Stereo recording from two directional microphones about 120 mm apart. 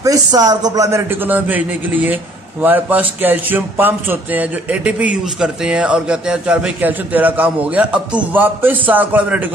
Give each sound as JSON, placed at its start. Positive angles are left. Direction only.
{"t": 0.0, "sound": "a man's voice", "side_deg": -30}